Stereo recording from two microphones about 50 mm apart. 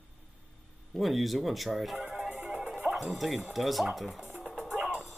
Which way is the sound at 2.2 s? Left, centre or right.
Centre.